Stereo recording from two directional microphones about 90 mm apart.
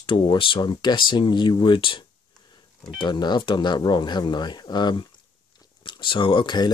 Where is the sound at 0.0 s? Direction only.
70° left (ahead or behind).